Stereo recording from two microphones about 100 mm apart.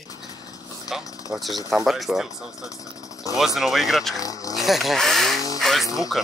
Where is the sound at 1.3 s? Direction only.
Centre (ahead or behind).